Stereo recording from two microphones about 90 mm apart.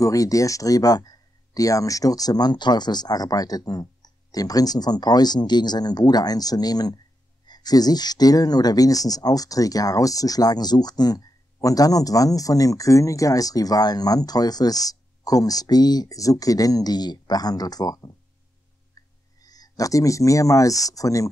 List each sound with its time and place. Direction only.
0.0 s speech: 40° left (ahead or behind)
19.0 s a sound: 40° left (ahead or behind)
19.4 s speech: 45° left (ahead or behind)